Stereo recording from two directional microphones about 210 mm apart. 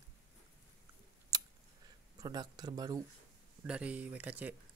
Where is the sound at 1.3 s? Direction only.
20° right (ahead or behind).